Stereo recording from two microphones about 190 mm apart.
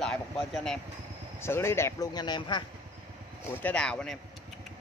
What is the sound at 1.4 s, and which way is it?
Speech, 15° left (ahead or behind).